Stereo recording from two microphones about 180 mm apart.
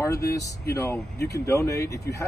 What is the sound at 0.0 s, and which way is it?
Speech, 15° left (ahead or behind).